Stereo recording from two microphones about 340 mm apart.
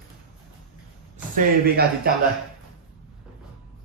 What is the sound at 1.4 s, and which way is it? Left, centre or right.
Speech, right.